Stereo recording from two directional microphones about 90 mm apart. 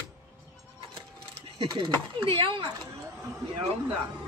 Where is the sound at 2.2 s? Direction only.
90° right.